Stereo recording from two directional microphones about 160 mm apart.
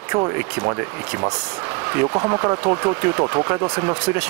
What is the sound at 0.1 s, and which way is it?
Speech, 15° right (ahead or behind).